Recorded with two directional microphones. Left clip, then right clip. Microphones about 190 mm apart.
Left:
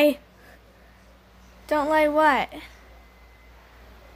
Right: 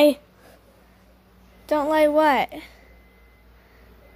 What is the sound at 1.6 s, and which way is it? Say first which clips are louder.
A woman's voice: right 2 dB; 5° right (ahead or behind).